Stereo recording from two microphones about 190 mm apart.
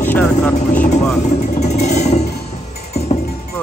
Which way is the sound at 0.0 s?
10° left (ahead or behind).